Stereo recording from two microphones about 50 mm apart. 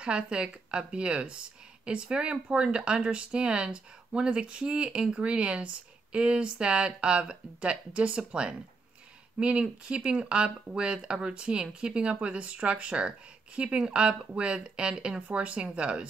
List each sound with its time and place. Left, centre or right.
0.0 s speech: right